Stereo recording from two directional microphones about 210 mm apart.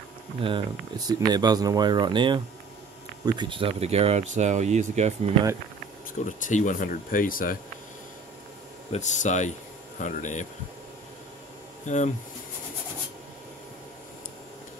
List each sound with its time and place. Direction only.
0.4 s speech: 25° right (ahead or behind)
6.1 s speech: 35° left (ahead or behind)
8.9 s speech: 35° left (ahead or behind)